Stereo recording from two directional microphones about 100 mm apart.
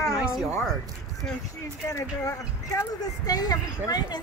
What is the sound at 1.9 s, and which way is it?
Speech, 30° left (ahead or behind).